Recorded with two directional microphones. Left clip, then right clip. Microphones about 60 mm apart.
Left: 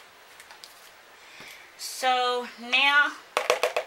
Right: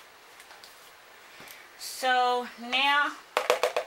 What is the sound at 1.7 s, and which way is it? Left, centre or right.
Speech, left.